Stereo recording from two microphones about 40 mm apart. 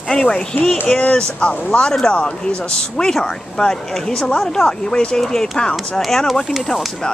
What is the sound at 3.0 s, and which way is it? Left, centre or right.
Speech, centre.